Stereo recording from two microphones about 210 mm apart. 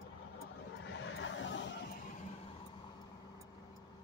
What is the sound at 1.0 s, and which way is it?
Vehicle, 65° left (ahead or behind).